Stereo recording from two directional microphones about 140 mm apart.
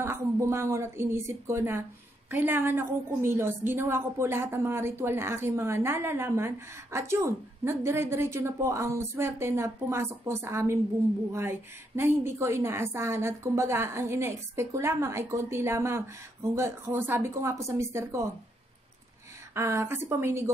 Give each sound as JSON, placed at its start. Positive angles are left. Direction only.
{"t": 0.0, "sound": "a woman's voice", "side_deg": -20}
{"t": 19.5, "sound": "a woman's voice", "side_deg": -20}